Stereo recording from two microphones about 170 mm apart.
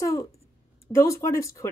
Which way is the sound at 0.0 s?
20° left (ahead or behind).